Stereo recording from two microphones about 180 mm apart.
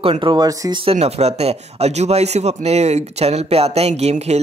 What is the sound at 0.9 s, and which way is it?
Speech, 35° right (ahead or behind).